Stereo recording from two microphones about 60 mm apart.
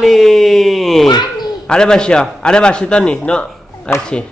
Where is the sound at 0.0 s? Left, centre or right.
Centre.